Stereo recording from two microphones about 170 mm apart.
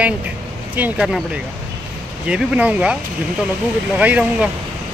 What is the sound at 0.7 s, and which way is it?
Speech, 5° right (ahead or behind).